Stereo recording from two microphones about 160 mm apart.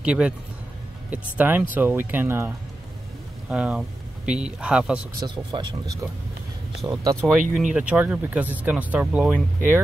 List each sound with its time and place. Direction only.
0.0 s speech: 5° right (ahead or behind)
5.2 s speech: 30° right (ahead or behind)
7.3 s speech: 5° right (ahead or behind)